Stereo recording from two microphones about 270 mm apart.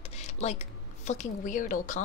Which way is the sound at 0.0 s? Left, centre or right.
Left.